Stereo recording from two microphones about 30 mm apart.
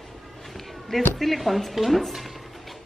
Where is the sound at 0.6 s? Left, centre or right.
Centre.